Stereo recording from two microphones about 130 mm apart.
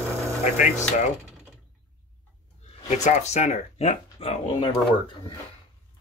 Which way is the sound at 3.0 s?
65° left (ahead or behind).